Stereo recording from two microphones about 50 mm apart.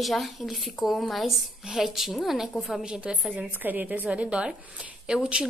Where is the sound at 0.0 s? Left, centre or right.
Centre.